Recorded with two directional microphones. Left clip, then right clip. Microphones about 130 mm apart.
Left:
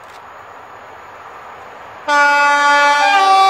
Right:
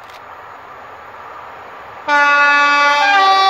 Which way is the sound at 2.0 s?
25° left (ahead or behind).